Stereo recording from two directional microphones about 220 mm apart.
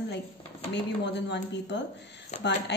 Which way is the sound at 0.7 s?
50° left (ahead or behind).